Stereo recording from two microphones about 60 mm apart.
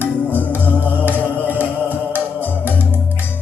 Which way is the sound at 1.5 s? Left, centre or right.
Right.